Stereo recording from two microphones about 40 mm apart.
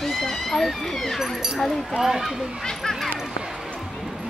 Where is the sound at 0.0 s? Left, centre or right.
Centre.